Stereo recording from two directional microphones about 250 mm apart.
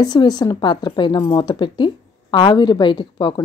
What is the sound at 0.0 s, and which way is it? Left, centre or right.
Speech, centre.